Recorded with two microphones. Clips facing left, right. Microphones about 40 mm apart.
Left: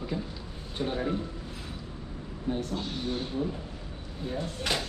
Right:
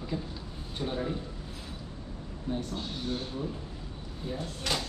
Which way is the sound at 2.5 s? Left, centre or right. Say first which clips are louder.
Left 3 dB; centre.